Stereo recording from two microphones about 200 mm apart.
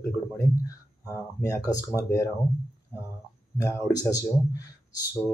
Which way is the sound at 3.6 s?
15° left (ahead or behind).